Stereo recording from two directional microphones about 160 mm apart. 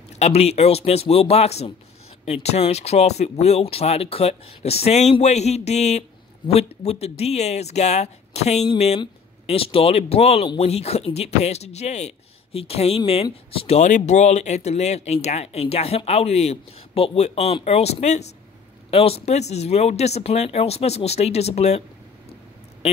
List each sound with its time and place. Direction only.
0.2 s a man's voice: 40° left (ahead or behind)